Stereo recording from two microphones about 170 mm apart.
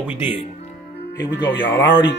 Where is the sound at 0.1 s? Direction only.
10° right (ahead or behind).